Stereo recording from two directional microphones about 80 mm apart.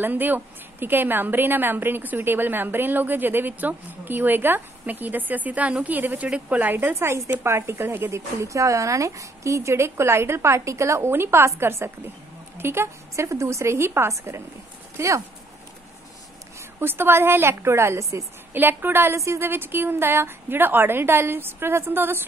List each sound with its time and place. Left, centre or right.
0.0 s a woman's voice: right
16.8 s a woman's voice: right
18.5 s a woman's voice: right